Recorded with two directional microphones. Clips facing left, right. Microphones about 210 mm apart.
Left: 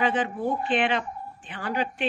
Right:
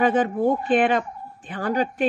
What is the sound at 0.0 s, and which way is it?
A woman's voice, 45° right (ahead or behind).